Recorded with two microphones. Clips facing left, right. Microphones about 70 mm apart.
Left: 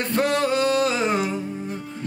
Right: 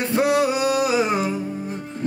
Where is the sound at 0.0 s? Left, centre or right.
Centre.